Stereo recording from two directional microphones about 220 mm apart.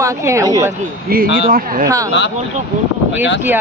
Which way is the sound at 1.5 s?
40° right (ahead or behind).